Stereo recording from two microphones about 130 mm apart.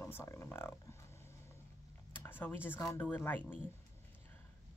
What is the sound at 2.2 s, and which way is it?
Speech, 15° left (ahead or behind).